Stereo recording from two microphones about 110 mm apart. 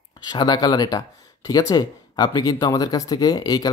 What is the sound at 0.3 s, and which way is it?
Speech, 40° left (ahead or behind).